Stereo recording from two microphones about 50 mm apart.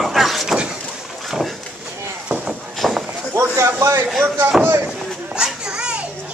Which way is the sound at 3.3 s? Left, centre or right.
Right.